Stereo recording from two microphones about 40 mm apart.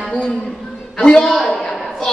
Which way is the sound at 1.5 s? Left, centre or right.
Centre.